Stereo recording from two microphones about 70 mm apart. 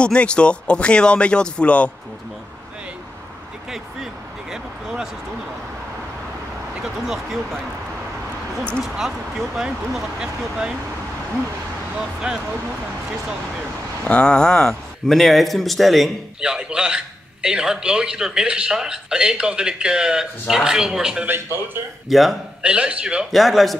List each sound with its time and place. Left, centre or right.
0.0 s speech: centre
3.7 s a sound: centre
6.8 s speech: centre
8.8 s speech: centre
12.0 s a man's voice: centre
14.0 s a man's voice: centre
22.6 s a man's voice: centre
23.3 s speech: centre